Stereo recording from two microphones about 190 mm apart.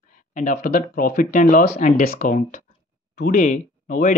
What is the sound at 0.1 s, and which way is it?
Speech, 40° left (ahead or behind).